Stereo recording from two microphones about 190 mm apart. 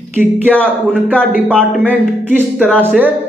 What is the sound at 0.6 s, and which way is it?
A man's voice, 10° right (ahead or behind).